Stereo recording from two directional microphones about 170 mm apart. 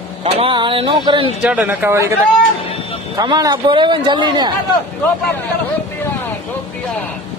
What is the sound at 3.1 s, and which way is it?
A man's voice, 20° right (ahead or behind).